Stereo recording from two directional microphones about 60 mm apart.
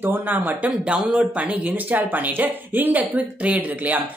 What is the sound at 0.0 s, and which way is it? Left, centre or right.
Speech, right.